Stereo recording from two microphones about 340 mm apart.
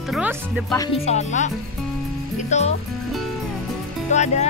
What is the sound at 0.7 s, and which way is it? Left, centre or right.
Speech, centre.